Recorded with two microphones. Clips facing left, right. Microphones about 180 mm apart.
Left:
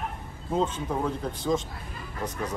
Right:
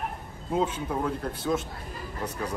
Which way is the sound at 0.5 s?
10° right (ahead or behind).